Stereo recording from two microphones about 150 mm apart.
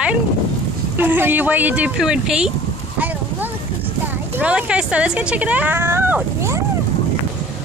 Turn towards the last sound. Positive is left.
turn(degrees=-15)  # may be behind; listen again after turning